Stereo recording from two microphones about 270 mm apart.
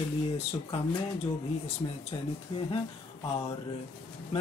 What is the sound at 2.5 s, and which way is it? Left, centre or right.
Speech, left.